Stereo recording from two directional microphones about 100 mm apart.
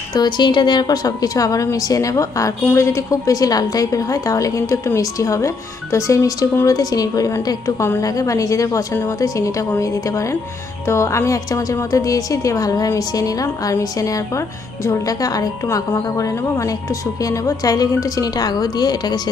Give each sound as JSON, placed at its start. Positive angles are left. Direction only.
{"t": 0.1, "sound": "a woman's voice", "side_deg": 45}